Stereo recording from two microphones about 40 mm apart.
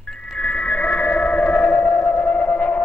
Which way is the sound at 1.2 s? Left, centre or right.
Left.